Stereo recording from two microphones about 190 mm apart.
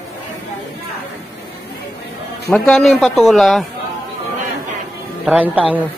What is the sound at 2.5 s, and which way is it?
Speech, 5° left (ahead or behind).